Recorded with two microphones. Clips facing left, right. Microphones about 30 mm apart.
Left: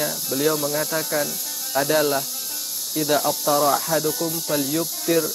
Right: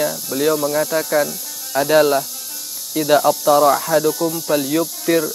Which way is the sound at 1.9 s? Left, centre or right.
Centre.